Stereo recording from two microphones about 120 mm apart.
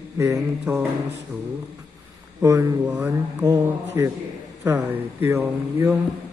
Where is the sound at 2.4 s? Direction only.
25° right (ahead or behind).